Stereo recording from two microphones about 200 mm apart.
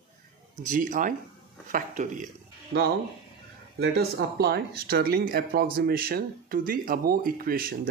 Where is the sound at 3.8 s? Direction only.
55° right (ahead or behind).